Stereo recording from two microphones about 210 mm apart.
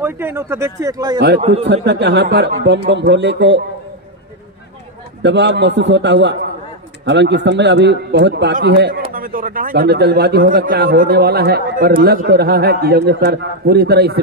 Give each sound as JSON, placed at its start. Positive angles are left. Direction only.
{"t": 0.0, "sound": "speech", "side_deg": -10}
{"t": 1.9, "sound": "a man's voice", "side_deg": -55}
{"t": 5.2, "sound": "a man's voice", "side_deg": -55}
{"t": 9.1, "sound": "a man's voice", "side_deg": -40}